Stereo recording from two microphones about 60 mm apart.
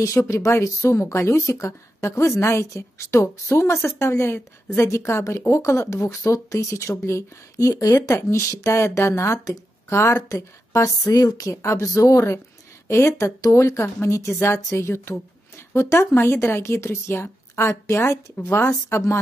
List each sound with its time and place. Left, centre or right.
0.0 s speech: left
8.3 s speech: left
10.2 s speech: left